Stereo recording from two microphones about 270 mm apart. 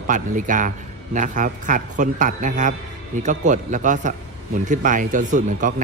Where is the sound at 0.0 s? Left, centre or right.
Right.